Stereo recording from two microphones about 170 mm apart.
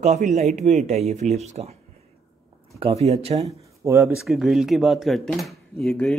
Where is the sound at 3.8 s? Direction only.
15° right (ahead or behind).